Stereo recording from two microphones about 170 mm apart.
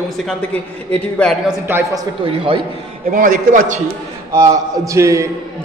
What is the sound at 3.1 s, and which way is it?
Speech, 50° right (ahead or behind).